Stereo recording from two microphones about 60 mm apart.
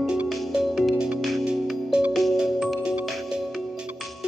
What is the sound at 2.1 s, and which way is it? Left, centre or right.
Music, centre.